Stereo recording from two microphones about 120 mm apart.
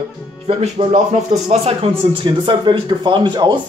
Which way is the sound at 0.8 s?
50° right (ahead or behind).